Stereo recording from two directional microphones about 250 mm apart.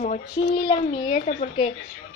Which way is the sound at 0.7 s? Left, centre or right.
Left.